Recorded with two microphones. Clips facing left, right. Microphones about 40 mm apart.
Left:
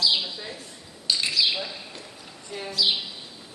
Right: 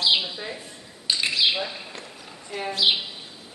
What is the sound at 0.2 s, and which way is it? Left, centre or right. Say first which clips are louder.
Bird: right 2 dB; right.